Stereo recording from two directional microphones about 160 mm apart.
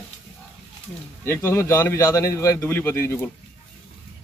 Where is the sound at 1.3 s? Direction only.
15° left (ahead or behind).